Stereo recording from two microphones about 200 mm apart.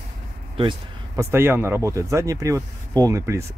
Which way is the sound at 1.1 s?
15° right (ahead or behind).